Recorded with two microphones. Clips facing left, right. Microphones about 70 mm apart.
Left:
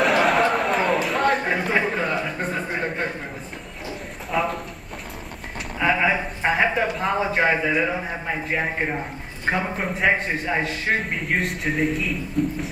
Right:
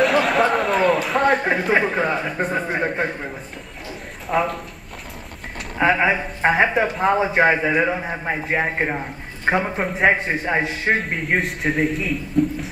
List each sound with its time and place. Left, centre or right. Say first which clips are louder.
0.0 s chatter: right 1 dB; centre
1.4 s speech: right 3 dB; centre
4.3 s a man's voice: right 3 dB; centre
5.8 s a man's voice: right 3 dB; centre
9.6 s a man's voice: right 3 dB; centre
10.0 s a man's voice: right 3 dB; right
10.6 s a man's voice: right 3 dB; centre